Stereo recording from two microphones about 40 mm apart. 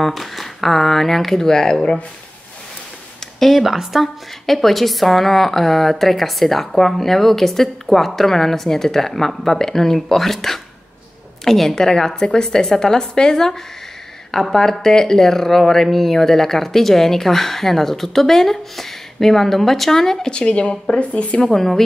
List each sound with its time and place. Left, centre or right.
0.0 s speech: centre
1.5 s speech: centre
3.3 s a woman's voice: centre
20.2 s speech: left
21.5 s speech: centre